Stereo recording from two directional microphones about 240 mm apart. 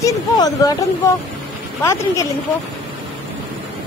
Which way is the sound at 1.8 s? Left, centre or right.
Centre.